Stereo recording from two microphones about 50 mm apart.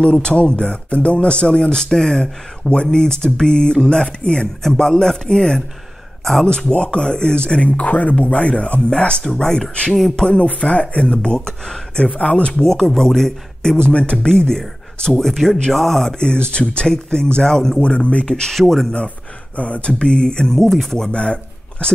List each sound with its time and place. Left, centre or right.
0.0 s speech: centre
10.2 s speech: left
12.6 s speech: centre
13.8 s speech: left; by 16.2 s centre
16.2 s speech: centre
17.7 s speech: left
18.5 s speech: centre
19.5 s speech: left